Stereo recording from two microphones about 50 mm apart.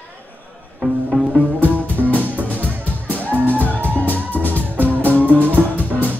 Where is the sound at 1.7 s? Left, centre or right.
Right.